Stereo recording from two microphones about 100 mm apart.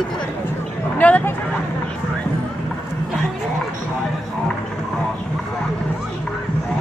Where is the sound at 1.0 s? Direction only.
15° left (ahead or behind).